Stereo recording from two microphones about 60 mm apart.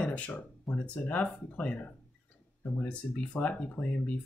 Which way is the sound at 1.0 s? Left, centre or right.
Left.